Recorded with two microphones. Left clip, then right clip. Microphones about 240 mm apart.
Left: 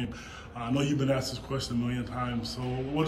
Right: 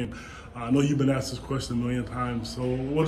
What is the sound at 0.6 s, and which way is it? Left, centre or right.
A man's voice, centre.